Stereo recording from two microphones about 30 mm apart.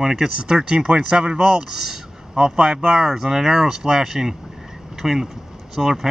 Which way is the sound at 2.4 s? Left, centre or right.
Right.